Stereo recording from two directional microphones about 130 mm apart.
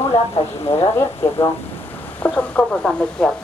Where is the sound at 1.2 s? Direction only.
20° left (ahead or behind).